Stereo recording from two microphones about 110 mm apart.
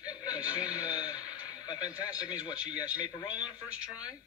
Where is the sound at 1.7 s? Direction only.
35° left (ahead or behind).